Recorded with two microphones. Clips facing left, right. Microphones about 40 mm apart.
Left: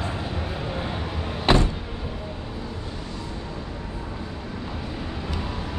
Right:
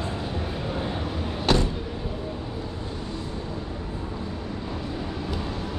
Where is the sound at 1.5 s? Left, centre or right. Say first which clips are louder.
Left 3 dB; left.